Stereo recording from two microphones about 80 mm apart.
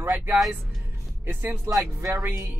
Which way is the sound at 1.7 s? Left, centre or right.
Right.